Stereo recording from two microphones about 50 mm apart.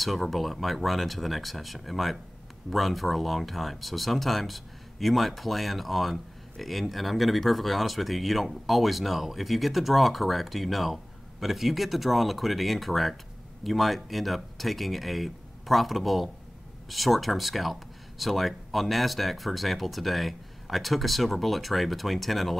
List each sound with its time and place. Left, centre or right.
0.0 s speech: centre